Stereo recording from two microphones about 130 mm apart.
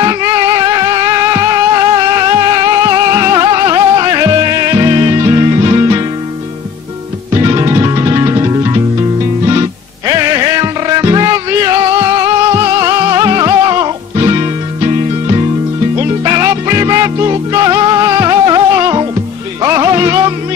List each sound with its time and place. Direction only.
0.0 s music: 30° right (ahead or behind)
7.4 s music: 25° right (ahead or behind)
16.0 s music: 30° right (ahead or behind)